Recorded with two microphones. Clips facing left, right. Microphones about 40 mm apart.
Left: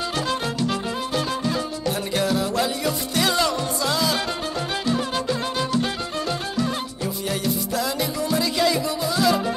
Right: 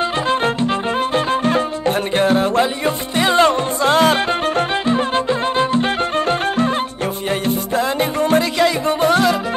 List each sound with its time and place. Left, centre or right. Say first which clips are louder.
0.3 s music: right 8 dB; right